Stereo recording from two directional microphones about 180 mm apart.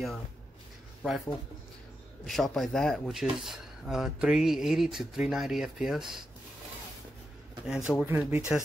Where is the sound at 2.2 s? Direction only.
Centre (ahead or behind).